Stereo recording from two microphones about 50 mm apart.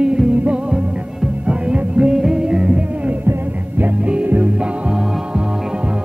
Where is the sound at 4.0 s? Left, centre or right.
Right.